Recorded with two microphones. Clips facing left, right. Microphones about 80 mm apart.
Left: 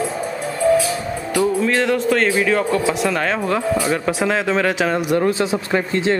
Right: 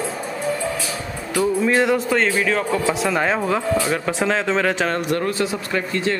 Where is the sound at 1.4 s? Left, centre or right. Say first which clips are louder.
Even; centre.